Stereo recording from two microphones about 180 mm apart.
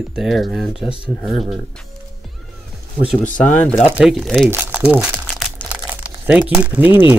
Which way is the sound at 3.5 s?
10° left (ahead or behind).